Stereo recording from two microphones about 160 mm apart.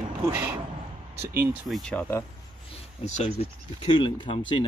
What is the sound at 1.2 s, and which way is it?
Speech, 75° right (ahead or behind).